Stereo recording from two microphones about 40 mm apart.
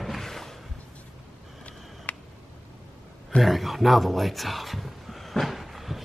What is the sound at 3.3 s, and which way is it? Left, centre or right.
Speech, centre.